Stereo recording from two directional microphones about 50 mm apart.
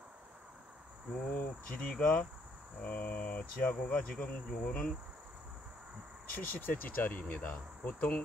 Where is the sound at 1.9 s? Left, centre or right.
Left.